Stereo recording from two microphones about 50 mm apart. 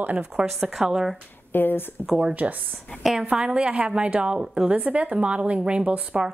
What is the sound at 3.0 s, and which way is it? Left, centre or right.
Speech, centre.